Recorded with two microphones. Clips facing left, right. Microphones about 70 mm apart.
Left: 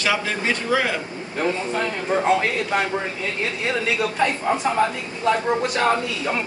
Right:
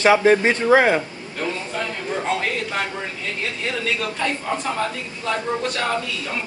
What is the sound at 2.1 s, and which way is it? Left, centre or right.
Speech, left.